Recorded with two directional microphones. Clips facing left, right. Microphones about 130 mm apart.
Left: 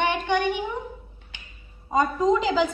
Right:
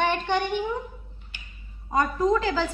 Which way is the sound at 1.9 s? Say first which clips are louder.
Left 1 dB; 20° left (ahead or behind).